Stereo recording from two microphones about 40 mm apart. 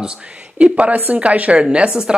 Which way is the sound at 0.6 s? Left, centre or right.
Right.